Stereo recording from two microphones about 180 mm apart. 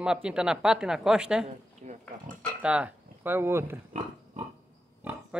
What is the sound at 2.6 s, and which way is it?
Speech, 5° right (ahead or behind).